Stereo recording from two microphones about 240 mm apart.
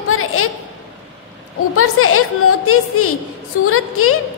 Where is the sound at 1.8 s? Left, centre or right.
Left.